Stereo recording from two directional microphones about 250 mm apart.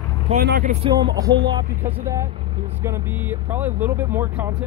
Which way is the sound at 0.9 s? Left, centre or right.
Centre.